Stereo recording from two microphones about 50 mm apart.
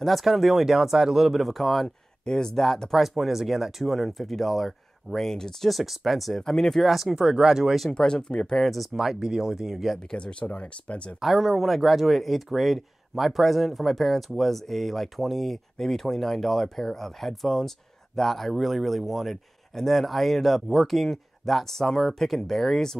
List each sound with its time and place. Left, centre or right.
0.0 s speech: centre
3.0 s speech: centre
5.7 s speech: centre
7.9 s speech: centre
8.9 s speech: centre
10.1 s speech: centre
11.1 s speech: centre